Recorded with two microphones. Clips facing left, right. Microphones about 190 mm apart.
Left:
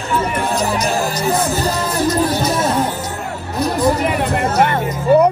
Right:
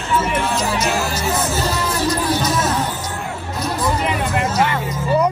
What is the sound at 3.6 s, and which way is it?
Music, 45° left (ahead or behind).